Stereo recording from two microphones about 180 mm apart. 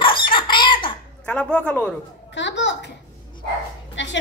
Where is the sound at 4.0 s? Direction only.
90° left.